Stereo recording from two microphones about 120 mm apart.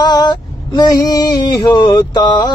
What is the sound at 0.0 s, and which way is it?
Mantra, 35° left (ahead or behind).